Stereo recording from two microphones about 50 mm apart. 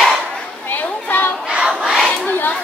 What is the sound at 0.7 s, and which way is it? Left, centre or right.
Children playing, left.